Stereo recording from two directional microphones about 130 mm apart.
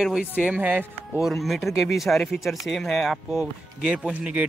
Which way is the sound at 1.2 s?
Centre (ahead or behind).